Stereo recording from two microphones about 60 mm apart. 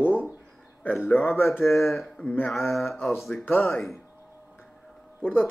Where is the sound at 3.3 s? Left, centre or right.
Left.